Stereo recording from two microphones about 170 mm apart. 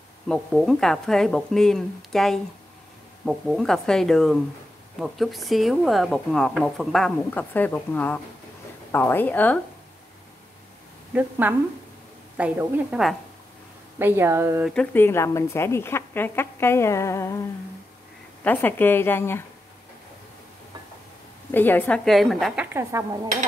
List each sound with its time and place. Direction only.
0.3 s a woman's voice: centre (ahead or behind)
11.1 s a woman's voice: 10° right (ahead or behind)
14.7 s a woman's voice: 10° left (ahead or behind)
18.4 s a woman's voice: 10° left (ahead or behind)
21.5 s a woman's voice: 10° left (ahead or behind)
22.7 s a woman's voice: 15° right (ahead or behind)